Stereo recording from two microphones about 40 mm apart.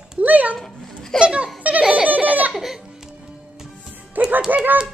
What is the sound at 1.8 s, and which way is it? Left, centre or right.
Giggle, right.